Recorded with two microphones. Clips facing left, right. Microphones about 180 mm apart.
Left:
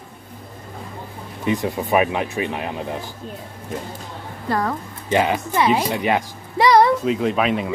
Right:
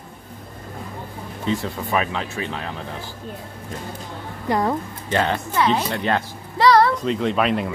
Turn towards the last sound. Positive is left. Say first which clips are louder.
# left 1 dB
turn(degrees=0)  # may be behind; listen again after turning